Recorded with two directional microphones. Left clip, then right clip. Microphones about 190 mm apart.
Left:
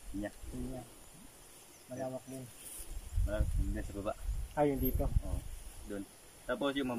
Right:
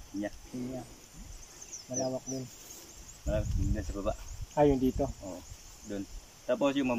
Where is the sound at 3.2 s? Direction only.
5° right (ahead or behind).